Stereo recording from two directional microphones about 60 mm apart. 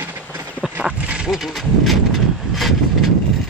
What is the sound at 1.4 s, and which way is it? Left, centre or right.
Speech, centre.